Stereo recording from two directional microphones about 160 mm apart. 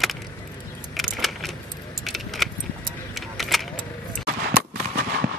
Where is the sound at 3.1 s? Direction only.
Centre (ahead or behind).